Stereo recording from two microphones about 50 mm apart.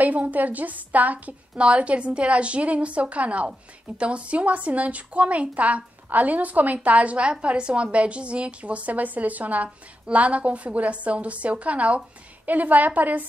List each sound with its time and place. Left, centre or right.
0.0 s a woman's voice: right